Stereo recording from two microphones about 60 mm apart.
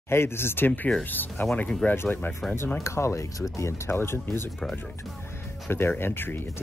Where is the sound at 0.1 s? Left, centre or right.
Left.